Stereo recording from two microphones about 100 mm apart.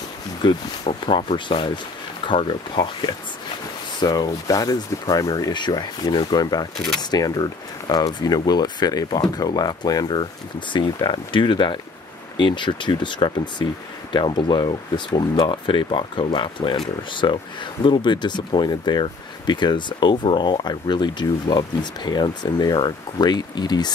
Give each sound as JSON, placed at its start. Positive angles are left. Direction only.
{"t": 0.4, "sound": "speech", "side_deg": 50}
{"t": 4.0, "sound": "speech", "side_deg": 45}